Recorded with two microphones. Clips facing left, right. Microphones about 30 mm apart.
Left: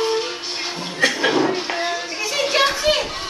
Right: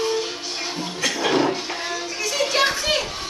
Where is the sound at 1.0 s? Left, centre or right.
Left.